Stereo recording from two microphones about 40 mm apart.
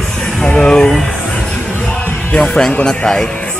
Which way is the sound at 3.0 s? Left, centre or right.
Centre.